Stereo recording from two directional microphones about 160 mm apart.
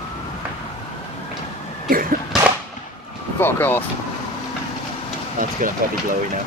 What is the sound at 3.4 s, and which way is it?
Speech, 15° left (ahead or behind).